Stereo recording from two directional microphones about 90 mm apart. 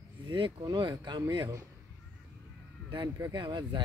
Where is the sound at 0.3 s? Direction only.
60° right (ahead or behind).